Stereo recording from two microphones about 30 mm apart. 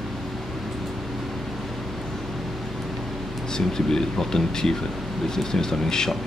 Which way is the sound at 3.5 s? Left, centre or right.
Centre.